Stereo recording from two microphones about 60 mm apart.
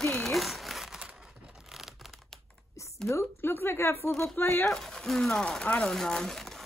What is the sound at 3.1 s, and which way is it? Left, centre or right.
Speech, left.